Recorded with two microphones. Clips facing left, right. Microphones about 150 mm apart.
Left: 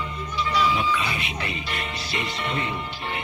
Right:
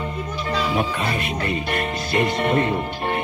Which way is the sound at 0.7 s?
50° right (ahead or behind).